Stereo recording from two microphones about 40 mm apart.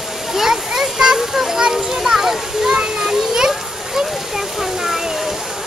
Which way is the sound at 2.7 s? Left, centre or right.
Centre.